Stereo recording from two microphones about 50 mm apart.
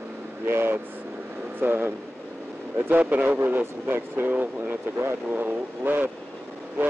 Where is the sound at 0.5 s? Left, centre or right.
Right.